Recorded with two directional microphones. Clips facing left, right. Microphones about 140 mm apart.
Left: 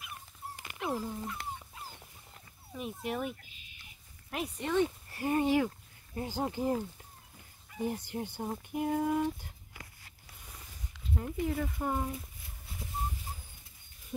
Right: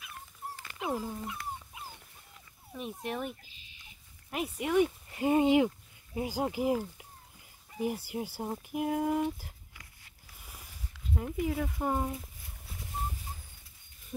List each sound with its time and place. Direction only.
0.7 s speech: 15° right (ahead or behind)
1.7 s dog: 15° right (ahead or behind)
2.7 s speech: centre (ahead or behind)
3.4 s a sound: 30° right (ahead or behind)
4.3 s speech: 5° right (ahead or behind)
11.1 s speech: 5° right (ahead or behind)
11.8 s speech: 15° right (ahead or behind)